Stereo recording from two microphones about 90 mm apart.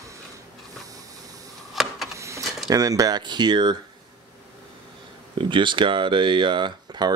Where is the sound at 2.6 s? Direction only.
40° right (ahead or behind).